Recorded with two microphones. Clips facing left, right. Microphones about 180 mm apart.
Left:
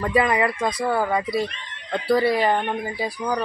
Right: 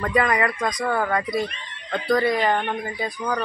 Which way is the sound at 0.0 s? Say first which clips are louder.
Left 1 dB; 5° left (ahead or behind).